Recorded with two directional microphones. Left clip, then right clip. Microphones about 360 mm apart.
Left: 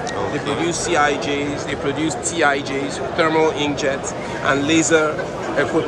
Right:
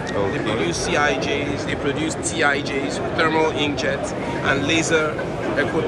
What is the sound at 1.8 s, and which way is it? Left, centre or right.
Speech, left.